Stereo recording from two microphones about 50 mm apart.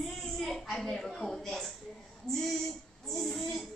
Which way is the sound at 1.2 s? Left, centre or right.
Centre.